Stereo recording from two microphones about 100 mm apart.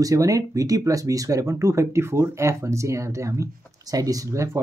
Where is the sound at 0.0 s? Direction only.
35° right (ahead or behind).